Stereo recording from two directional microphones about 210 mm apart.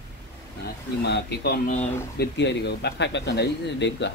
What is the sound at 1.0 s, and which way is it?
Speech, 50° left (ahead or behind).